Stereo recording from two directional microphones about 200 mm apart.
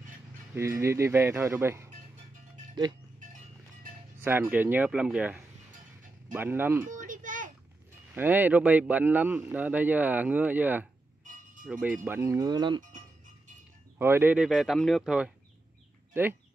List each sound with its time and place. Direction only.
0.6 s speech: 15° right (ahead or behind)
4.2 s speech: 10° right (ahead or behind)
6.9 s a sound: 40° right (ahead or behind)
8.1 s speech: 10° right (ahead or behind)
13.9 s speech: 10° right (ahead or behind)